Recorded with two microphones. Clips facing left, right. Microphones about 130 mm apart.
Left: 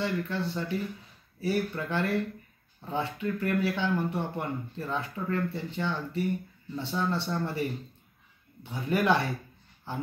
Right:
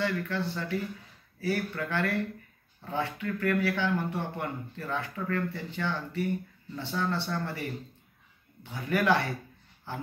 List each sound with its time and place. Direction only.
0.0 s speech: 25° left (ahead or behind)
8.7 s speech: 25° left (ahead or behind)